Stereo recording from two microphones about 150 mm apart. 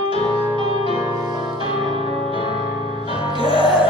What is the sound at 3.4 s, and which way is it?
Music, 35° left (ahead or behind).